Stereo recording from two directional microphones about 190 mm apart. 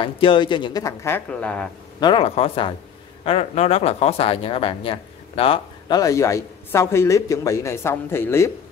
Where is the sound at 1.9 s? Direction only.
25° left (ahead or behind).